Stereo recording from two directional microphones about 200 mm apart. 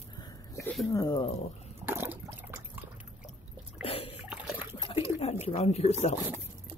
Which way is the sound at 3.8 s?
30° left (ahead or behind).